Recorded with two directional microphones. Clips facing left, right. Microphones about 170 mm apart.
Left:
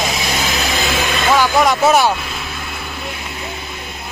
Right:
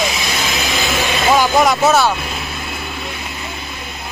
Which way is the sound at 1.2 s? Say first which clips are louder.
Right 1 dB; 15° right (ahead or behind).